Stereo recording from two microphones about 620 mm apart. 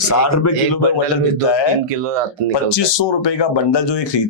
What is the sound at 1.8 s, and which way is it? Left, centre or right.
Speech, right.